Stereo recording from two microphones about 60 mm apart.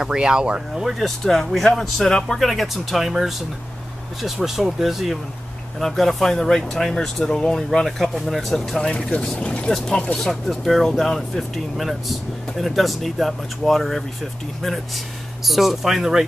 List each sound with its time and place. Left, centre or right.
0.0 s speech: centre
0.8 s speech: centre
15.4 s speech: centre